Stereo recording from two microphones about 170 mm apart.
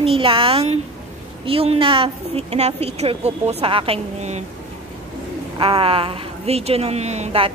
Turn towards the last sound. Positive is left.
turn(degrees=-35)  # may be behind; listen again after turning